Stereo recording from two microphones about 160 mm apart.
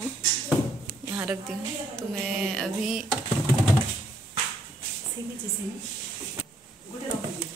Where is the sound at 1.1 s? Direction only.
10° right (ahead or behind).